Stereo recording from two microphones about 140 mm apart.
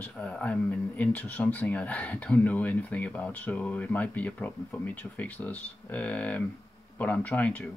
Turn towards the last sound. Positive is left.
turn(degrees=10)  # may be behind; listen again after turning